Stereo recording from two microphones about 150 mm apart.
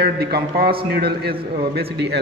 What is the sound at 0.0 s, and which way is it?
Speech, 90° right.